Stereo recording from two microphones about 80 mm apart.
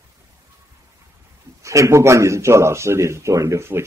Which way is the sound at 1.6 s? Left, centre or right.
Right.